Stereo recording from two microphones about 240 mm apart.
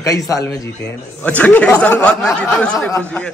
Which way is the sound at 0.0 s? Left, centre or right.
Centre.